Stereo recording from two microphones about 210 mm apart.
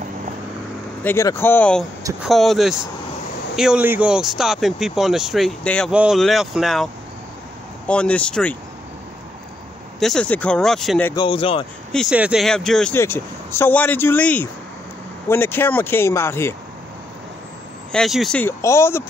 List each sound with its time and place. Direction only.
1.0 s speech: 10° left (ahead or behind)
9.9 s speech: centre (ahead or behind)
11.1 s speech: 25° left (ahead or behind)
11.9 s speech: centre (ahead or behind)
17.9 s speech: centre (ahead or behind)